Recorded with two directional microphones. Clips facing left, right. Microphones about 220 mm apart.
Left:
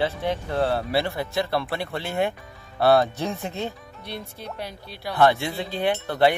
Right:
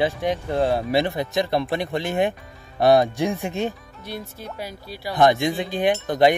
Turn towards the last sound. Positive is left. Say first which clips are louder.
# right 3 dB
turn(degrees=-15)  # may be behind; listen again after turning